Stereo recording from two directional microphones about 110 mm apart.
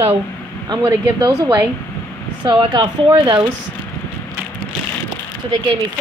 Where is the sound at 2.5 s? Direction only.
45° right (ahead or behind).